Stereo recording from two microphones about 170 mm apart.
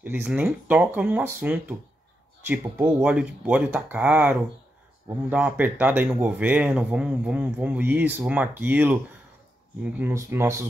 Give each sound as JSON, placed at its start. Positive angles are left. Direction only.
{"t": 0.0, "sound": "speech", "side_deg": -10}